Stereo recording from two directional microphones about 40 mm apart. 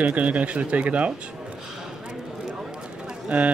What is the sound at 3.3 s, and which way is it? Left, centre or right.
Speech, right.